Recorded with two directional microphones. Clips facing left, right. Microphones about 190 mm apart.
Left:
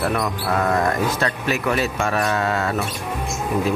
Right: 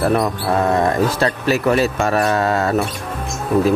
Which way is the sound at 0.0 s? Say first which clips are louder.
Right 5 dB; 35° right (ahead or behind).